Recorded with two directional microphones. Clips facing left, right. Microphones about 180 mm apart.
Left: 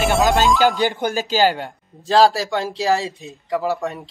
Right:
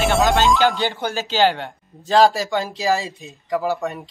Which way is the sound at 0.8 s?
15° left (ahead or behind).